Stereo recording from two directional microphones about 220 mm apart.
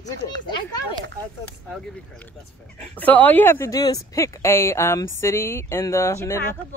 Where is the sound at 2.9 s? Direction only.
5° left (ahead or behind).